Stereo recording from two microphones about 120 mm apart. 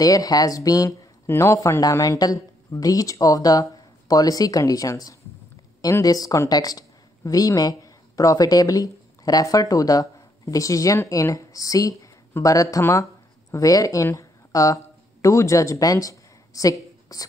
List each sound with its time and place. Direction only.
0.0 s a woman's voice: 30° left (ahead or behind)
12.0 s a sound: 25° left (ahead or behind)
12.7 s speech: 25° left (ahead or behind)